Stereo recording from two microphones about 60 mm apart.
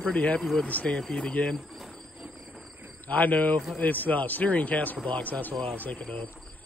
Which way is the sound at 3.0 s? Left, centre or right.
Left.